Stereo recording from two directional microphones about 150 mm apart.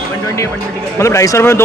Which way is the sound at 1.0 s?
20° left (ahead or behind).